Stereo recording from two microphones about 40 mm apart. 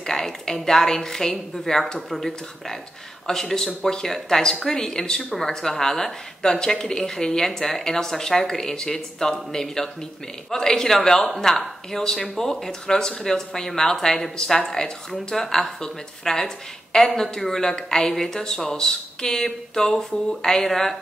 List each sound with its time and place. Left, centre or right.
0.0 s speech: centre